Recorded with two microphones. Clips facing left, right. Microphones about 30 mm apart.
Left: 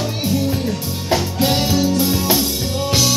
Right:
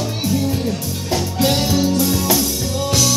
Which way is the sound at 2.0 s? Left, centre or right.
Centre.